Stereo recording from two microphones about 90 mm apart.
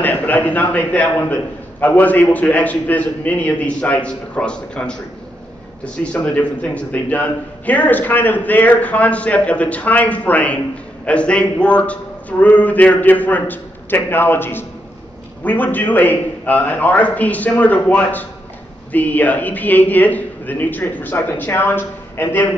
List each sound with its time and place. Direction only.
0.0 s a man's voice: 20° left (ahead or behind)
6.1 s a man's voice: 15° left (ahead or behind)